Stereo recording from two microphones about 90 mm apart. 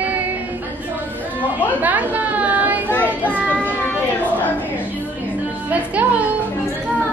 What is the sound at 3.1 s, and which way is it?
Child singing, 20° right (ahead or behind).